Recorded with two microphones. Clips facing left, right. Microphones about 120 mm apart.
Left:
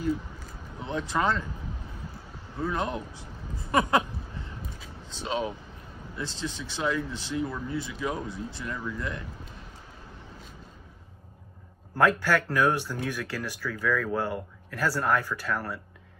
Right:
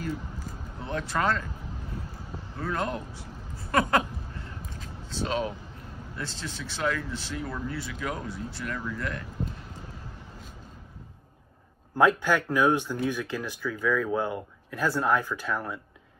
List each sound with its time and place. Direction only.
0.7 s speech: 20° left (ahead or behind)
2.6 s a man's voice: 20° left (ahead or behind)
5.1 s speech: 20° left (ahead or behind)
12.0 s speech: 15° right (ahead or behind)